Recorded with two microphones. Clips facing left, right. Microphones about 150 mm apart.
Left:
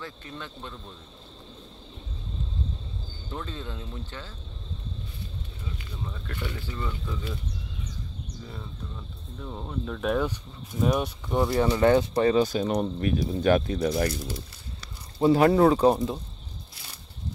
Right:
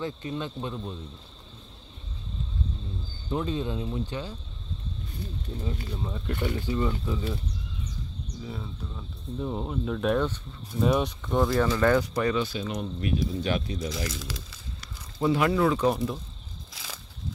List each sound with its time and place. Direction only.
0.0 s speech: 20° right (ahead or behind)
3.3 s speech: 15° right (ahead or behind)
5.6 s speech: 40° right (ahead or behind)
6.0 s speech: 20° right (ahead or behind)
9.4 s speech: 20° right (ahead or behind)
9.7 s speech: 5° right (ahead or behind); by 12.4 s 30° left (ahead or behind)
12.4 s speech: 45° left (ahead or behind)
13.8 s speech: 75° left (ahead or behind)
14.1 s speech: 90° right
15.2 s speech: 40° left (ahead or behind)
16.7 s a sound: 90° right